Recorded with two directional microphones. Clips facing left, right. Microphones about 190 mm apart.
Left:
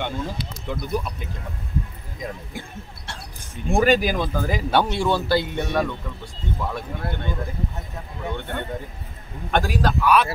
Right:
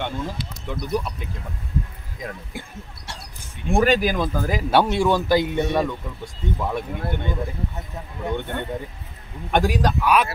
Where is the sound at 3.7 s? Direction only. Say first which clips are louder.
Even; centre (ahead or behind); by 5.9 s 15° right (ahead or behind).